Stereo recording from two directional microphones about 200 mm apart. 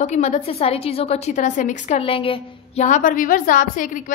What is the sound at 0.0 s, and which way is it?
A woman's voice, 35° left (ahead or behind).